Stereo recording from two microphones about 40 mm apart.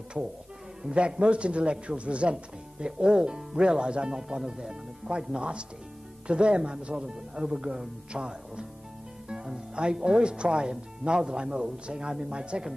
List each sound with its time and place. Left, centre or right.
0.9 s speech: right